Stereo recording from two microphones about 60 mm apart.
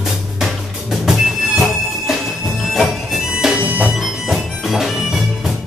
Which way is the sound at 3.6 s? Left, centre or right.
Right.